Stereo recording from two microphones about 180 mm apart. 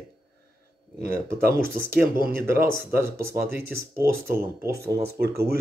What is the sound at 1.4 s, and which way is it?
Speech, 55° right (ahead or behind).